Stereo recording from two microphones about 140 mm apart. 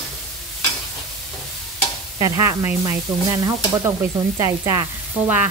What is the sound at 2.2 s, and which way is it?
Speech, 20° right (ahead or behind).